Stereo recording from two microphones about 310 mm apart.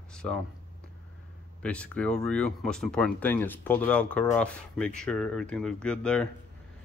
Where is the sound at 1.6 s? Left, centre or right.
Centre.